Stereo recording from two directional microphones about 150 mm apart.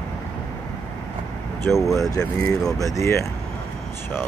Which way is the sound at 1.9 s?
20° left (ahead or behind).